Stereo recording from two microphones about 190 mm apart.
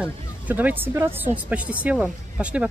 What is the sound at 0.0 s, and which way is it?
Speech, 10° right (ahead or behind).